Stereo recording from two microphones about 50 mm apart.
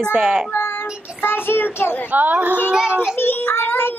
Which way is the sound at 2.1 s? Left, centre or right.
Right.